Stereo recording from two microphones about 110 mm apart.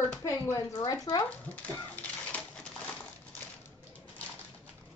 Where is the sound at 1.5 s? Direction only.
15° left (ahead or behind).